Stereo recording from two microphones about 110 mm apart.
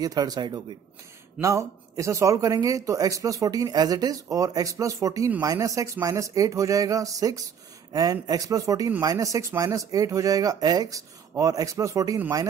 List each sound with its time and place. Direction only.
0.0 s a man's voice: 35° right (ahead or behind)
1.4 s a man's voice: 25° right (ahead or behind)